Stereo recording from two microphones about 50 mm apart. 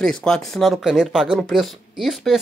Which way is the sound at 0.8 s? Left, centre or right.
Centre.